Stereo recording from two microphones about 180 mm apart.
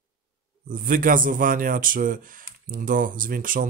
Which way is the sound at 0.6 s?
50° right (ahead or behind).